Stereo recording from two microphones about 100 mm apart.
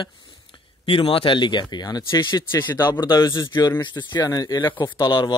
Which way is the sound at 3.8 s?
50° left (ahead or behind).